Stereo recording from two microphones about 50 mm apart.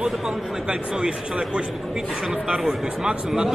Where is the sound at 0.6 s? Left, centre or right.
Centre.